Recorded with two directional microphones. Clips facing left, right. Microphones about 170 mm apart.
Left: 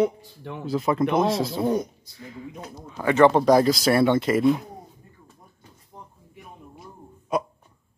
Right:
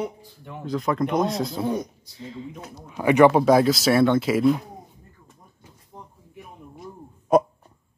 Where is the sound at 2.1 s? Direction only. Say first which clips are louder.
Right 2 dB; 25° right (ahead or behind); by 4.6 s centre (ahead or behind).